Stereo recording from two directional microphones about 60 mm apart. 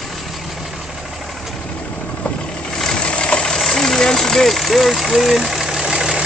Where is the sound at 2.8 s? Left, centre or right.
Centre.